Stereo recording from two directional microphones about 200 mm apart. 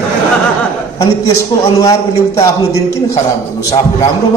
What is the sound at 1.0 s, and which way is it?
A man's voice, 15° left (ahead or behind).